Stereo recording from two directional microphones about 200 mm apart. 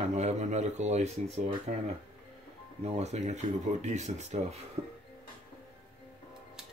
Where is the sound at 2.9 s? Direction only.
35° right (ahead or behind).